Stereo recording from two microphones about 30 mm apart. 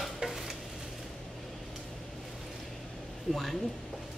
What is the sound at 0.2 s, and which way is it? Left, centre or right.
Stir, centre.